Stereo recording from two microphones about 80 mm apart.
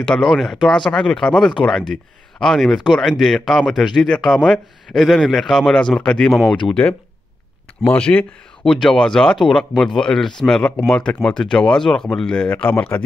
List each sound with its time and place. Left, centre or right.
0.0 s speech: centre
8.6 s speech: centre
12.4 s speech: centre